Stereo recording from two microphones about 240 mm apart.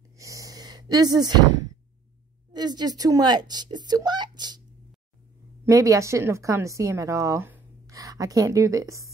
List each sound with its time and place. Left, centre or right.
0.2 s a sound: centre
2.5 s speech: centre
5.7 s a woman's voice: centre